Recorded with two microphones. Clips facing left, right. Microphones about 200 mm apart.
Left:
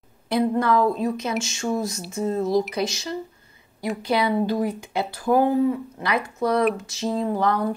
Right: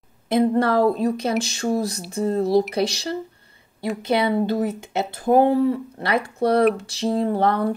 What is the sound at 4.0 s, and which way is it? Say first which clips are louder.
Speech: right 2 dB; 25° right (ahead or behind).